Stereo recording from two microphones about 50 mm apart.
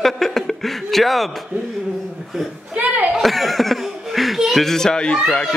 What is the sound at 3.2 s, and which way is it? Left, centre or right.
Speech, centre.